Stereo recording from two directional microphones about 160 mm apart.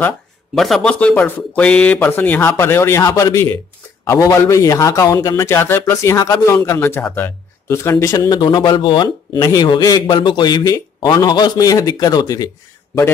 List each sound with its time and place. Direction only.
0.6 s a man's voice: centre (ahead or behind); by 12.4 s 25° left (ahead or behind)